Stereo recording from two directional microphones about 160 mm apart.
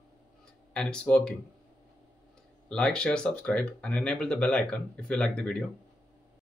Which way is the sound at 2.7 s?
5° left (ahead or behind).